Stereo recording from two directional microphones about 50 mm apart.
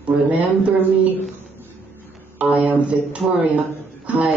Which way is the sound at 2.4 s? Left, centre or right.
Right.